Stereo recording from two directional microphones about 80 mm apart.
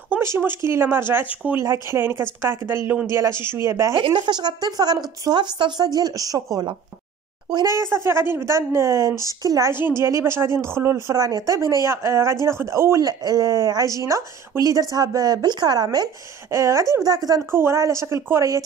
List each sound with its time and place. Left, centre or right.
0.2 s speech: right
4.0 s a woman's voice: right
7.6 s speech: right
9.7 s speech: right
11.1 s speech: right
13.0 s a woman's voice: right
16.5 s a woman's voice: right
17.0 s a woman's voice: right
17.5 s speech: right